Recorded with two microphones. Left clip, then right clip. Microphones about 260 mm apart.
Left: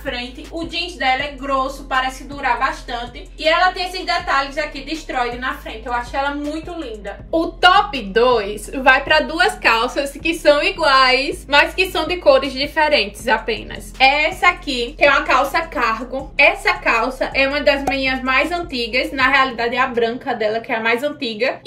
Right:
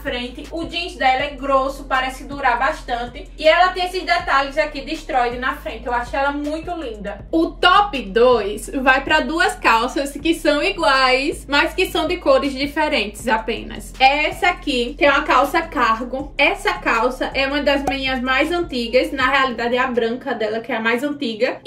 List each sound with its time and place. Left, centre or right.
0.9 s a woman's voice: centre
4.4 s a woman's voice: centre